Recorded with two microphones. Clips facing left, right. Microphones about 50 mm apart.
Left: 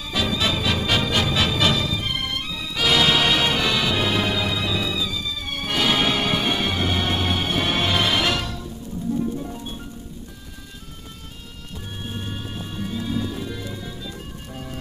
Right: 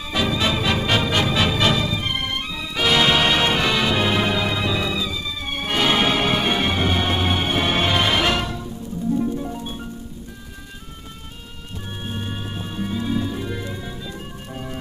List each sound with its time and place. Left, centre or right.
0.1 s music: centre
12.0 s music: centre